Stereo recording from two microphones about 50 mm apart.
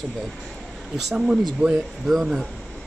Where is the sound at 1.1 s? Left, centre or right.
Centre.